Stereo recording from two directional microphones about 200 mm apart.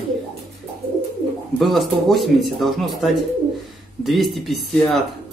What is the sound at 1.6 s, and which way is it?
Speech, centre (ahead or behind).